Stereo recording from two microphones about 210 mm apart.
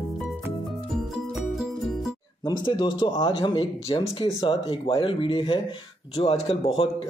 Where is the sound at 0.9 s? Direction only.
Centre (ahead or behind).